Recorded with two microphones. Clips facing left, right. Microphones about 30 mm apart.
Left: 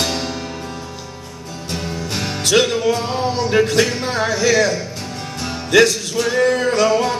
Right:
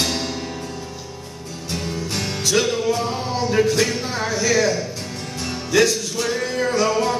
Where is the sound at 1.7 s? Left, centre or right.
Centre.